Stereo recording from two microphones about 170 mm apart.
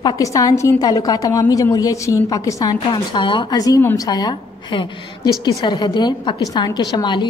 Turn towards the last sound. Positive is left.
turn(degrees=25)  # may be behind; listen again after turning